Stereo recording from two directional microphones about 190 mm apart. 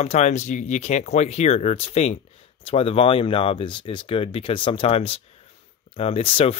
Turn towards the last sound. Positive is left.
turn(degrees=30)  # may be behind; listen again after turning